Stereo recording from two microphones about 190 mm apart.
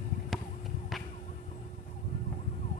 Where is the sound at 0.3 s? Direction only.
Centre (ahead or behind).